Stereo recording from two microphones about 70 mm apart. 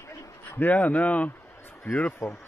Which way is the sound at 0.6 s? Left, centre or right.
Left.